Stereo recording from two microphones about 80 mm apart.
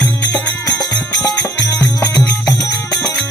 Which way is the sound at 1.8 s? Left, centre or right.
Left.